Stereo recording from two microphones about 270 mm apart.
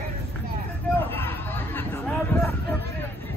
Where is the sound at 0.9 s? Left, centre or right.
Centre.